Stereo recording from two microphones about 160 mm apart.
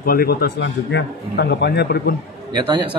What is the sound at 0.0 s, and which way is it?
Speech, 70° left (ahead or behind).